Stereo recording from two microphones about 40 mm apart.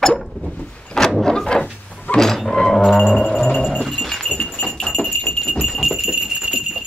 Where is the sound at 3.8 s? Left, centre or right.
Centre.